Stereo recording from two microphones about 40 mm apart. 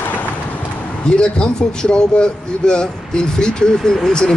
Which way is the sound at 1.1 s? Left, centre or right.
Left.